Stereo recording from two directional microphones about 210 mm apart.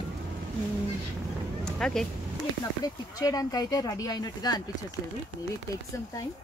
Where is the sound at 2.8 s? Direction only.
20° left (ahead or behind).